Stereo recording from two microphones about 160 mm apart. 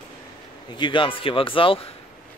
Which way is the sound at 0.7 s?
30° left (ahead or behind).